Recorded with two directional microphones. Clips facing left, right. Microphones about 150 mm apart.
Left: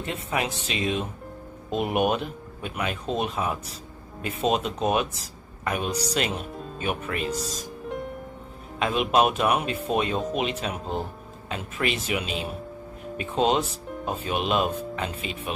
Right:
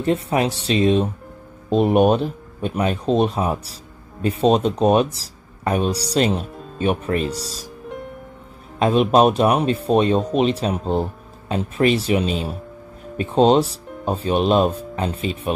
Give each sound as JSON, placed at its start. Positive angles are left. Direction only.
{"t": 0.0, "sound": "speech", "side_deg": -35}
{"t": 8.7, "sound": "speech", "side_deg": -35}